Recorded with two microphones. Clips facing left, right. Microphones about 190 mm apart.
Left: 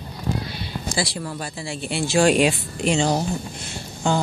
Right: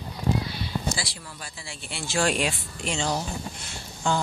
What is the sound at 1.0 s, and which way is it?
Speech, 70° left (ahead or behind).